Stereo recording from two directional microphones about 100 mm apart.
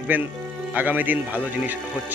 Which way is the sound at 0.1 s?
20° right (ahead or behind).